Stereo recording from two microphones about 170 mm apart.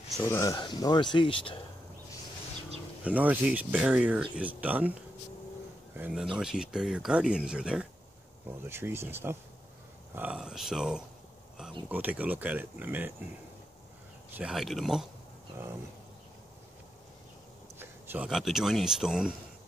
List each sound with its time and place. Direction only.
0.2 s speech: 15° left (ahead or behind)
3.0 s speech: 10° right (ahead or behind)
5.9 s speech: 5° right (ahead or behind)
8.6 s speech: 15° right (ahead or behind)
14.3 s speech: 5° right (ahead or behind)
17.7 s speech: 10° right (ahead or behind)